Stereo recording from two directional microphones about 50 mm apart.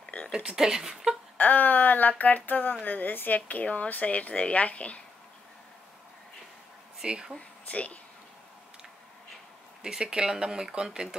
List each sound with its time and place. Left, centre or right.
0.3 s speech: centre
1.4 s a woman's voice: left
7.0 s speech: centre
7.3 s speech: left
9.8 s speech: centre